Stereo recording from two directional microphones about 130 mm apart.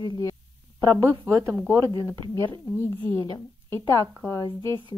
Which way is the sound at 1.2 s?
20° right (ahead or behind).